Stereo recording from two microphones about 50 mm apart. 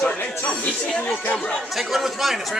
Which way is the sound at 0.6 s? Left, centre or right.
Centre.